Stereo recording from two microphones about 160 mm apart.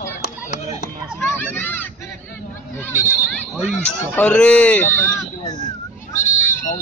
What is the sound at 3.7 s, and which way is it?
Speech, 10° left (ahead or behind).